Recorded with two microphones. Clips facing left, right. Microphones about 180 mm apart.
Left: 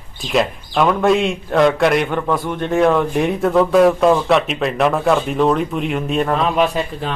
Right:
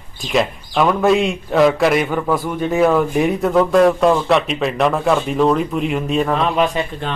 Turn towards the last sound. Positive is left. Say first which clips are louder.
# even
turn(degrees=0)  # may be behind; listen again after turning